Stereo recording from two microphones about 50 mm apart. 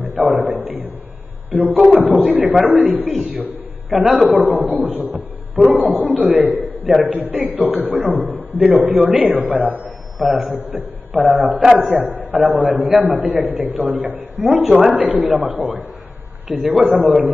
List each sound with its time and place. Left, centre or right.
0.0 s a sound: right
1.5 s a man's voice: right
3.9 s a man's voice: right